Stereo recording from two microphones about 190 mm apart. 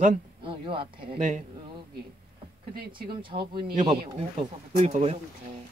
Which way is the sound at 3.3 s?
35° right (ahead or behind).